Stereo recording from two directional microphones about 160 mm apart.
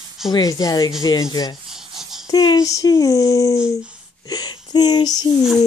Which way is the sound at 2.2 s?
25° left (ahead or behind).